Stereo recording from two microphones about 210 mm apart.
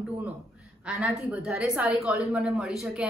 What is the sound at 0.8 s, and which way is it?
A woman's voice, 5° right (ahead or behind).